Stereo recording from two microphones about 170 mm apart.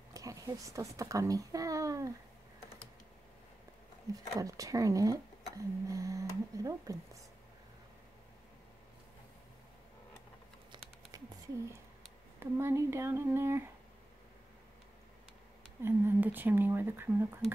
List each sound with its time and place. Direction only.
0.1 s a child's voice: 20° right (ahead or behind)
4.1 s speech: 20° right (ahead or behind)
10.7 s a sound: 20° right (ahead or behind)
12.4 s speech: 15° right (ahead or behind)
15.8 s speech: 15° right (ahead or behind)